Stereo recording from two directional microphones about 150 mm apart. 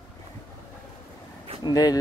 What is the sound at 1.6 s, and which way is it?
Speech, 25° left (ahead or behind).